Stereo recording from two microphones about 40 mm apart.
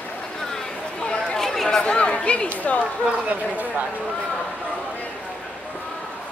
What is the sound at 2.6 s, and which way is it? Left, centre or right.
Speech, left.